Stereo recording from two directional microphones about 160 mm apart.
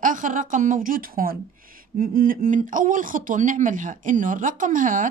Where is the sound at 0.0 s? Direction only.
55° right (ahead or behind).